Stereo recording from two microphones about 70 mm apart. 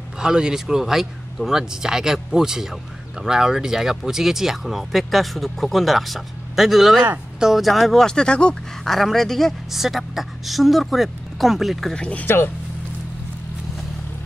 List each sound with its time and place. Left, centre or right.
0.2 s speech: centre
8.8 s speech: centre
11.9 s speech: centre